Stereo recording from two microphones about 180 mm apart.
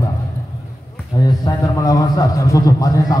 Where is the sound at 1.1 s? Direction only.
20° left (ahead or behind).